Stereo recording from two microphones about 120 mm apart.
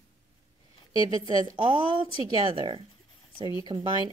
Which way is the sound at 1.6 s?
45° right (ahead or behind).